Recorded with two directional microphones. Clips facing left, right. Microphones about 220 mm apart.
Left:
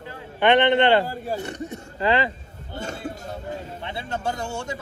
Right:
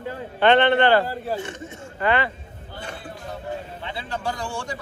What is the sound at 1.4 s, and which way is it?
Speech, 40° left (ahead or behind).